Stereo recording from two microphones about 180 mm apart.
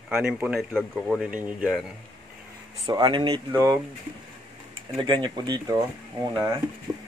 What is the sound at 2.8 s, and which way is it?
Speech, 25° right (ahead or behind).